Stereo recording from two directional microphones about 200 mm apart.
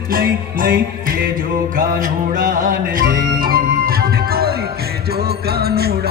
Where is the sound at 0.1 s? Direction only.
45° right (ahead or behind).